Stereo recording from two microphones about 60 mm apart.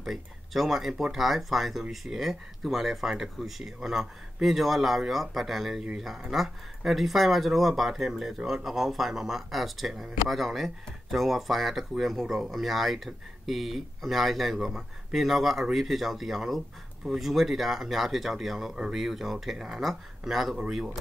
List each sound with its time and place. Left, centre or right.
0.0 s speech: centre